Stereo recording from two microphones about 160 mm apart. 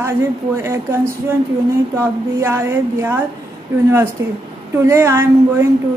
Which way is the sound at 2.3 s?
15° right (ahead or behind).